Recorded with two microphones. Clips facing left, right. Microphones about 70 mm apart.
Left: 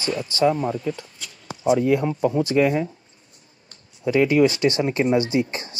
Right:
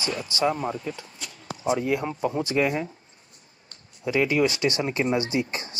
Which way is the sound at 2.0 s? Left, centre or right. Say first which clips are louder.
Left 6 dB; centre.